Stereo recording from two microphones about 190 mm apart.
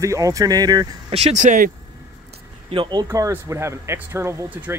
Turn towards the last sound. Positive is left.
turn(degrees=-10)  # may be behind; listen again after turning